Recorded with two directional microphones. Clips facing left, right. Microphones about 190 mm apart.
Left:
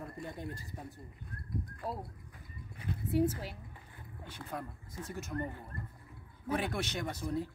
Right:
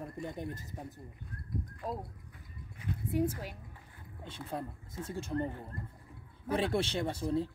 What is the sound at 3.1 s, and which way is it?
Speech, 10° right (ahead or behind).